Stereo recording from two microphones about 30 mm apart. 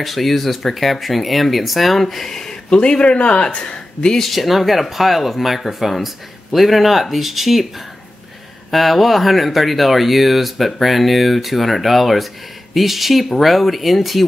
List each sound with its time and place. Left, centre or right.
0.0 s speech: centre
2.5 s speech: left
3.1 s speech: left
4.2 s speech: centre
8.6 s speech: centre